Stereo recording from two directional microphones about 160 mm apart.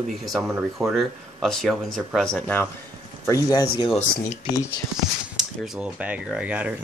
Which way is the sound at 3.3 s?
20° left (ahead or behind).